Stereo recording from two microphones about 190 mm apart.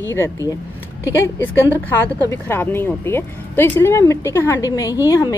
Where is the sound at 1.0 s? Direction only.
15° left (ahead or behind).